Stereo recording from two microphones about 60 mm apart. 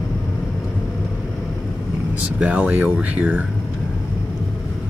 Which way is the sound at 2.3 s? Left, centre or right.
Right.